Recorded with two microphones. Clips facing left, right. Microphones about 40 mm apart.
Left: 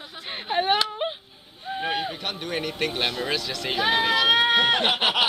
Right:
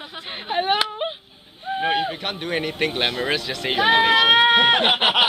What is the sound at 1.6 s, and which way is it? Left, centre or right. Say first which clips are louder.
A man's voice: right 5 dB; centre.